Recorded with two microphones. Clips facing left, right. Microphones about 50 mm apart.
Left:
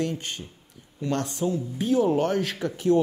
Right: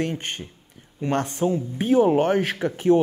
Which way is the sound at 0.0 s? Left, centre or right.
Right.